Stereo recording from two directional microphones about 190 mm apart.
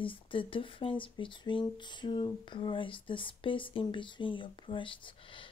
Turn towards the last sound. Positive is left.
turn(degrees=25)  # may be behind; listen again after turning